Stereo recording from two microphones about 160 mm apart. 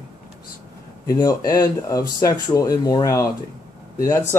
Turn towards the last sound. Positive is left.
turn(degrees=20)  # may be behind; listen again after turning